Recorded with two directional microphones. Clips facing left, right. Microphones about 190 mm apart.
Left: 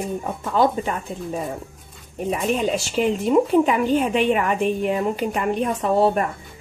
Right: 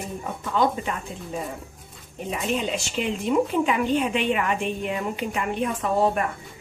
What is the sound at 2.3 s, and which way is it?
Speech, 40° left (ahead or behind).